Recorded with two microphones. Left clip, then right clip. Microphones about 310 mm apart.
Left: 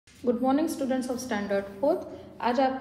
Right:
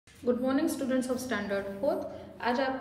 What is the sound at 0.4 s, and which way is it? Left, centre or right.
A woman's voice, centre.